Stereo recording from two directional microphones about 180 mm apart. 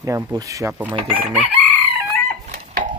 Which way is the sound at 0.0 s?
20° right (ahead or behind).